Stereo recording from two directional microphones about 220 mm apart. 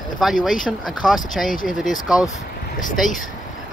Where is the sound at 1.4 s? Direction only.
40° left (ahead or behind).